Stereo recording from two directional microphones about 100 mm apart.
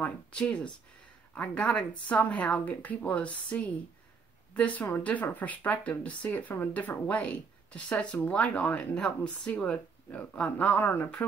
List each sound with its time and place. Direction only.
0.0 s speech: 10° left (ahead or behind)